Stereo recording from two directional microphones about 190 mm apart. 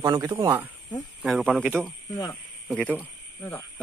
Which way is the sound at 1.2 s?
Centre (ahead or behind).